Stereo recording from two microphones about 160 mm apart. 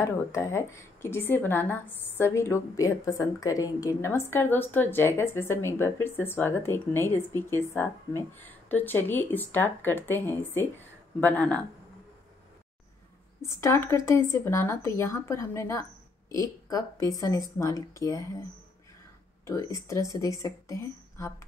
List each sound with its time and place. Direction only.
0.0 s a woman's voice: 15° left (ahead or behind)
13.4 s speech: 15° left (ahead or behind)
19.4 s speech: 20° left (ahead or behind)